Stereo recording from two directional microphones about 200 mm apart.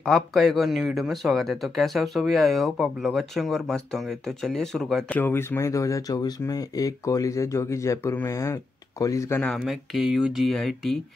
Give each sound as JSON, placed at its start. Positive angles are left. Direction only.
{"t": 0.0, "sound": "speech", "side_deg": 0}
{"t": 9.4, "sound": "speech", "side_deg": 0}